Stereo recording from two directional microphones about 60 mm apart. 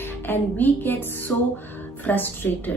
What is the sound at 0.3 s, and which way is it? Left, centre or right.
A woman's voice, left.